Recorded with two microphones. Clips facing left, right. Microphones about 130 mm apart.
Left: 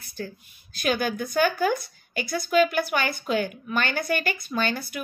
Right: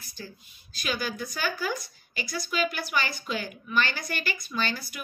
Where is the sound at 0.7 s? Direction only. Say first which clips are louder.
Left 6 dB; 55° left (ahead or behind).